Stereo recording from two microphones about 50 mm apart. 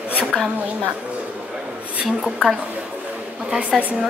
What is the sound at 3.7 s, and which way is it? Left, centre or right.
Speech, centre.